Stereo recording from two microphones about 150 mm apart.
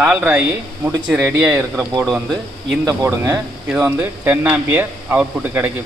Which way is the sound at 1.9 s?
20° right (ahead or behind).